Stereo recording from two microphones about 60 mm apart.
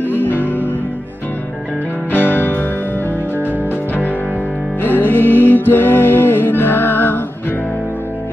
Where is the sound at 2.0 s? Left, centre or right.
Left.